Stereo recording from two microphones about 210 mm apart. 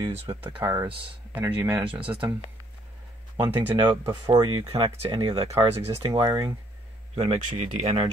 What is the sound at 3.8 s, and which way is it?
Speech, 20° right (ahead or behind).